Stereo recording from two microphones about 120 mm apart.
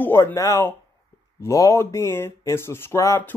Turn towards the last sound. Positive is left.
turn(degrees=25)  # may be behind; listen again after turning